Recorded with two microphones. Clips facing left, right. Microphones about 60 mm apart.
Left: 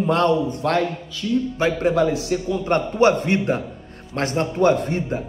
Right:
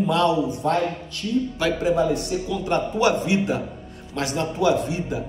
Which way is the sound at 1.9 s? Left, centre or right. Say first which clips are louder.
Left 2 dB; left.